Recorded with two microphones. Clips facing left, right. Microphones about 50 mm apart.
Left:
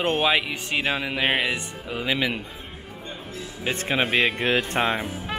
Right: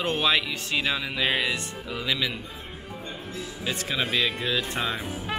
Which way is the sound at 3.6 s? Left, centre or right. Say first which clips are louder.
Left 5 dB; left.